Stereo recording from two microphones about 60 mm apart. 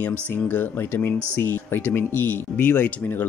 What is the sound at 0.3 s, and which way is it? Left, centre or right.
Speech, left.